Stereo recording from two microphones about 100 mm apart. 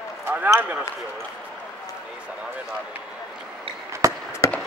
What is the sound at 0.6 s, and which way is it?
Speech, 15° right (ahead or behind).